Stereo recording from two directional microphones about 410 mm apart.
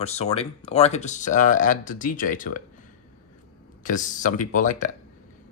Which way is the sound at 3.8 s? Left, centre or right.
Centre.